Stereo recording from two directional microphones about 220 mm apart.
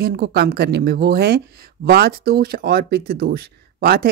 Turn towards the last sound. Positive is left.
turn(degrees=-45)  # may be behind; listen again after turning